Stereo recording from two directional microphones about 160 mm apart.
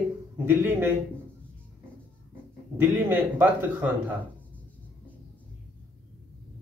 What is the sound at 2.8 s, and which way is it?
Speech, 10° right (ahead or behind).